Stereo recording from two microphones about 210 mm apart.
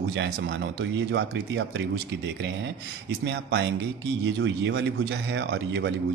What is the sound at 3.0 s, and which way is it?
Speech, 55° right (ahead or behind).